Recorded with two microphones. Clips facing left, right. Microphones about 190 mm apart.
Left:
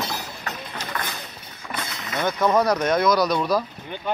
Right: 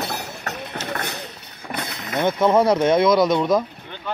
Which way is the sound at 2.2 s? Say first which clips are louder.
Right 3 dB; 25° right (ahead or behind).